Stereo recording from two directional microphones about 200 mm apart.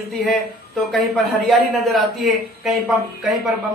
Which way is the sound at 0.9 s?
Centre (ahead or behind).